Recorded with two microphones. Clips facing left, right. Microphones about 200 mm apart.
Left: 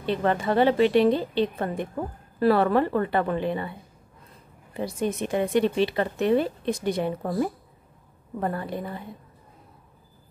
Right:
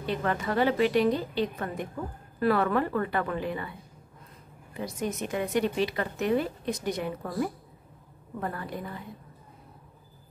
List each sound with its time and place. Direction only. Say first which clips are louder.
0.0 s a woman's voice: left 5 dB; 30° left (ahead or behind)
4.7 s a woman's voice: left 5 dB; 30° left (ahead or behind)